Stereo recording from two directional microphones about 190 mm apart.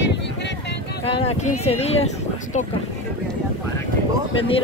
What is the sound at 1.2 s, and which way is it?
Speech, 35° left (ahead or behind).